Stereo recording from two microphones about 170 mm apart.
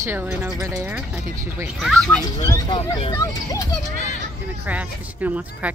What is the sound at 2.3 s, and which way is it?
A child's voice, 25° left (ahead or behind).